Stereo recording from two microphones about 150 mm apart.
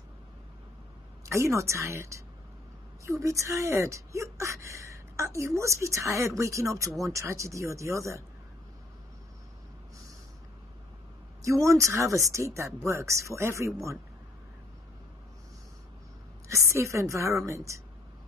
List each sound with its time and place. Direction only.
1.2 s speech: 20° right (ahead or behind)
11.4 s speech: 20° right (ahead or behind)
16.4 s speech: 20° right (ahead or behind)